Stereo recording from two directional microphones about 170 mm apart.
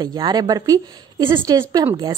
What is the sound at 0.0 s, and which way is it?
A woman's voice, 25° right (ahead or behind).